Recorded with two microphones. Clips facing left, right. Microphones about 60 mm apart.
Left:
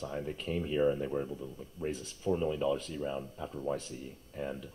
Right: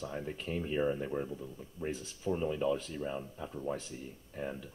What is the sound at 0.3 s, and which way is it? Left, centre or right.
Speech, right.